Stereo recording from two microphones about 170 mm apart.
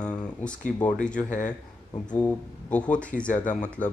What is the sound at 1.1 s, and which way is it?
Speech, 50° left (ahead or behind).